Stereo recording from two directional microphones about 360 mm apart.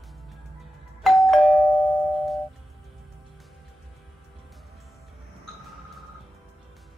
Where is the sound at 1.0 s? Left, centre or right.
Centre.